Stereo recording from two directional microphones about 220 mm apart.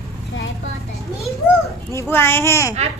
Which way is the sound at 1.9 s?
10° left (ahead or behind).